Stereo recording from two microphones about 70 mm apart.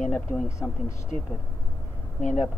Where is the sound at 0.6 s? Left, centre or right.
Left.